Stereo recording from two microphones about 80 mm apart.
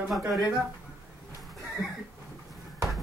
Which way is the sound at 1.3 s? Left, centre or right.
Centre.